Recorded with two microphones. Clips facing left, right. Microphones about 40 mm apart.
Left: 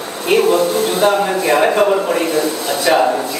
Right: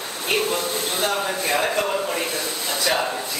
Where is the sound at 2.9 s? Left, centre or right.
Left.